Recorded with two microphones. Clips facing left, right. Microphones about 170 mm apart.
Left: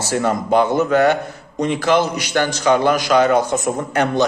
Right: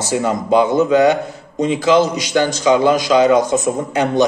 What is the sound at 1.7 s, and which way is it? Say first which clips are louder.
Speech: right 3 dB; 55° left (ahead or behind).